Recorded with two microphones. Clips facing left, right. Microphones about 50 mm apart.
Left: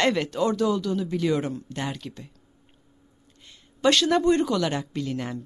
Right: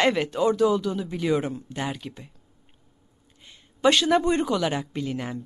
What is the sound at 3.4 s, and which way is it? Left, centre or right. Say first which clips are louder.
A woman's voice: right 2 dB; centre.